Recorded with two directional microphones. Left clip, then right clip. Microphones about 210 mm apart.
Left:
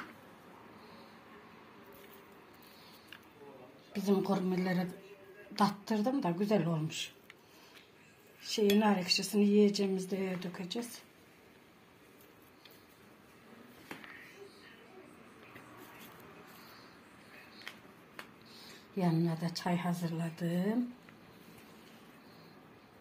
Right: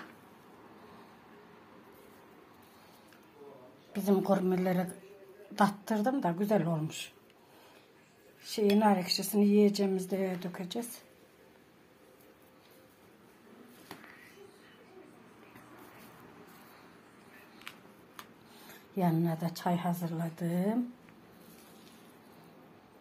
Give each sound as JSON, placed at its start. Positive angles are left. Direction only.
{"t": 3.9, "sound": "a woman's voice", "side_deg": -20}
{"t": 5.6, "sound": "cutlery", "side_deg": -20}
{"t": 8.7, "sound": "cutlery", "side_deg": -10}
{"t": 10.4, "sound": "a woman's voice", "side_deg": -20}
{"t": 18.9, "sound": "cutlery", "side_deg": -15}